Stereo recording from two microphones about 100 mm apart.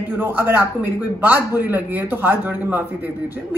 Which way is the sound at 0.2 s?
20° right (ahead or behind).